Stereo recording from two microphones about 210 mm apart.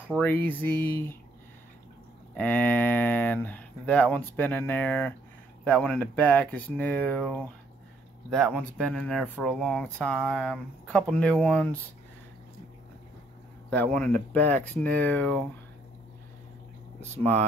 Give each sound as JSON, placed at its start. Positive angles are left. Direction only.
{"t": 0.2, "sound": "speech", "side_deg": 10}
{"t": 2.3, "sound": "speech", "side_deg": 10}
{"t": 8.5, "sound": "speech", "side_deg": 5}
{"t": 13.7, "sound": "speech", "side_deg": 5}